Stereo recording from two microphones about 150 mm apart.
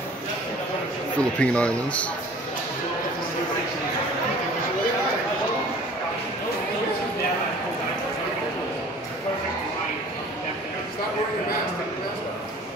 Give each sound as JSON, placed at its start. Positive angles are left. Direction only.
{"t": 1.4, "sound": "speech", "side_deg": 5}